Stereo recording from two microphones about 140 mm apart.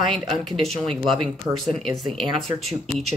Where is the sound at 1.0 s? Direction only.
40° right (ahead or behind).